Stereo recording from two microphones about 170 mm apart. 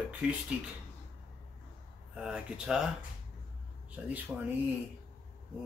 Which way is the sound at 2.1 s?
5° right (ahead or behind).